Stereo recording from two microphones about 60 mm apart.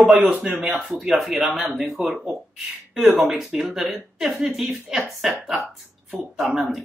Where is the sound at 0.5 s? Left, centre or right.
Centre.